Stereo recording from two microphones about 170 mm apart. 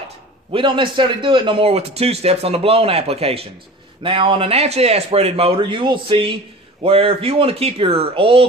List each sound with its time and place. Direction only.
0.5 s a man's voice: 30° right (ahead or behind)